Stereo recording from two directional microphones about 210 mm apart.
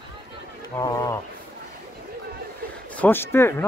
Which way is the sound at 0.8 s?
15° left (ahead or behind).